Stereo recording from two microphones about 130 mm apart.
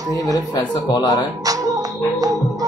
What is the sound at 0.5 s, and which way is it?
Speech, 30° left (ahead or behind).